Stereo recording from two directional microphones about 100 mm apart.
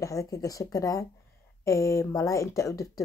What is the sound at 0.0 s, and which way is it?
Speech, 35° left (ahead or behind).